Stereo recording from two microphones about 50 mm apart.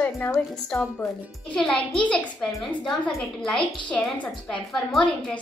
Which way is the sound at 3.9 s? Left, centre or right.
Left.